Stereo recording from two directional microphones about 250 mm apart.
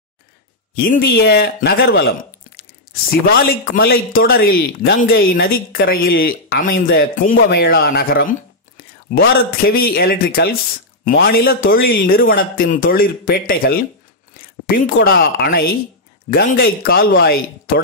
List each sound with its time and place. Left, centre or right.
0.7 s speech: left
15.0 s speech: left